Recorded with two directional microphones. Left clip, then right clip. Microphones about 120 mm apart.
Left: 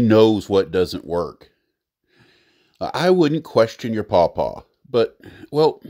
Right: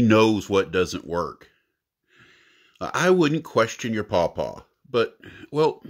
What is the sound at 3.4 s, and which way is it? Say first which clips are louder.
Speech: left 5 dB; 40° left (ahead or behind).